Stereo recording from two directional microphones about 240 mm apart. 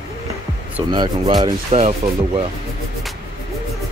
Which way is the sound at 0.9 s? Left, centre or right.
Centre.